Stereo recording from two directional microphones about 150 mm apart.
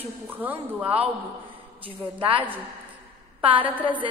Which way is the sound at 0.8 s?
40° right (ahead or behind).